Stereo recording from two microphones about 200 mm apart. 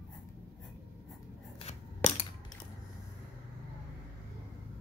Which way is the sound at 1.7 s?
35° left (ahead or behind).